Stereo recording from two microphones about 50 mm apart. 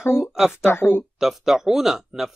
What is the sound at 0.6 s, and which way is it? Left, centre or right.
Speech, left.